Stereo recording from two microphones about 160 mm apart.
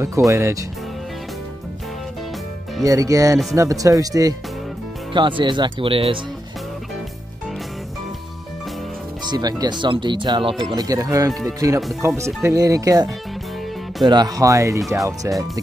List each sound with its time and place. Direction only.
0.3 s speech: 20° right (ahead or behind)
2.8 s speech: 20° right (ahead or behind)
9.2 s speech: 25° right (ahead or behind)